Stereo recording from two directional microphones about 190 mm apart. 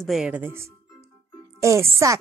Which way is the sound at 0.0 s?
Centre (ahead or behind).